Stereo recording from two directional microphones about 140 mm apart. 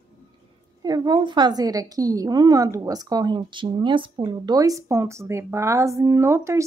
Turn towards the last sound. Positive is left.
turn(degrees=-20)  # may be behind; listen again after turning